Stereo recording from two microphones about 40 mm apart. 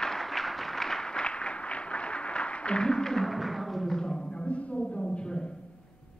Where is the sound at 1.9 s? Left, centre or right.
Left.